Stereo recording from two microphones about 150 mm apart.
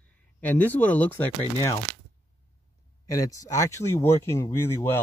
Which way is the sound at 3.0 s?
20° left (ahead or behind).